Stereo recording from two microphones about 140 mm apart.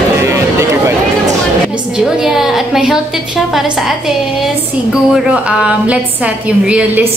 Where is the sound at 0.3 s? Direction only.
20° right (ahead or behind).